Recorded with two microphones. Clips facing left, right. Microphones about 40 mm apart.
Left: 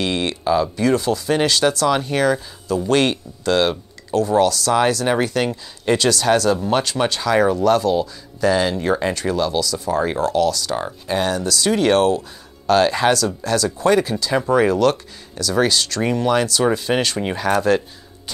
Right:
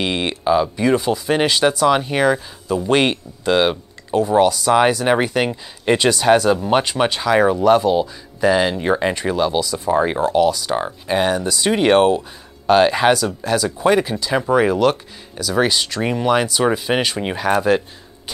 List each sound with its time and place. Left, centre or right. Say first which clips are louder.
0.0 s speech: right 1 dB; centre